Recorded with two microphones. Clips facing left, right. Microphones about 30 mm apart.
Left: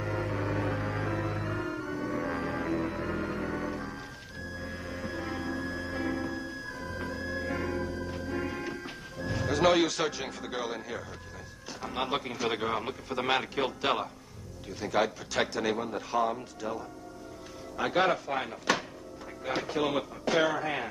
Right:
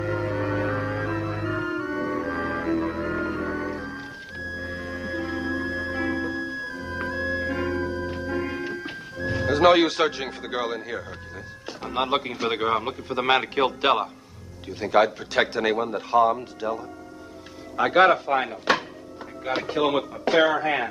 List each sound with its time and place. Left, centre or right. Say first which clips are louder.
0.0 s music: right 6 dB; centre
2.1 s music: right 5 dB; centre
9.2 s a man's voice: right 7 dB; right
19.5 s a man's voice: right 6 dB; right